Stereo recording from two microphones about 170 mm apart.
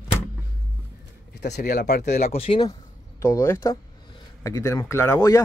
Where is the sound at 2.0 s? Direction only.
40° left (ahead or behind).